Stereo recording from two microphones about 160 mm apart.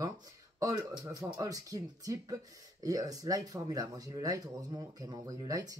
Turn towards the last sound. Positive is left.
turn(degrees=-25)  # may be behind; listen again after turning